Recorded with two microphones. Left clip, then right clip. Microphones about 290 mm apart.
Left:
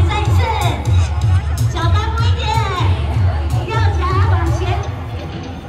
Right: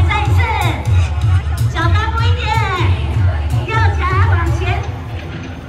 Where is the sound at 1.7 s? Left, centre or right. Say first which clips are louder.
Right 3 dB; centre.